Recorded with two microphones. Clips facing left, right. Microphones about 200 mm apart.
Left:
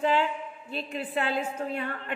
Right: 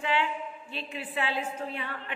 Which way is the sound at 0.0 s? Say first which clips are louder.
Left 4 dB; 40° left (ahead or behind).